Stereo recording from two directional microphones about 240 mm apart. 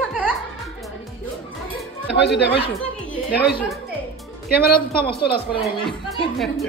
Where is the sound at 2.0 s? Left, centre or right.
Left.